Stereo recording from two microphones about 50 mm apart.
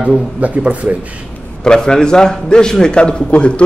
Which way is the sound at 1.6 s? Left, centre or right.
Centre.